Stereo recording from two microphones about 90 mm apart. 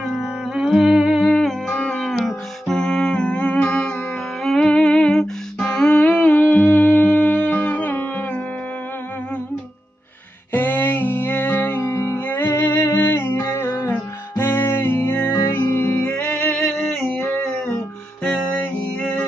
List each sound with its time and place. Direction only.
0.0 s music: centre (ahead or behind)
1.2 s music: 5° left (ahead or behind)
10.5 s music: 20° left (ahead or behind)
16.5 s a sound: 10° left (ahead or behind)
18.2 s music: 15° left (ahead or behind)